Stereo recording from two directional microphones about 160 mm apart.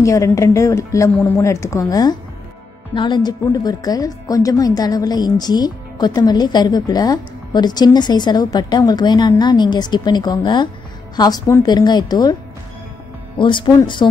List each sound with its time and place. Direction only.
0.0 s speech: 20° left (ahead or behind)
13.4 s speech: 30° left (ahead or behind)